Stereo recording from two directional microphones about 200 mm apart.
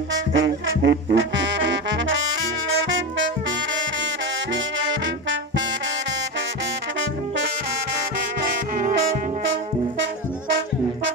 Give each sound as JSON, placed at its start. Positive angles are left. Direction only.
{"t": 0.1, "sound": "brass instrument", "side_deg": -65}
{"t": 4.7, "sound": "brass instrument", "side_deg": -70}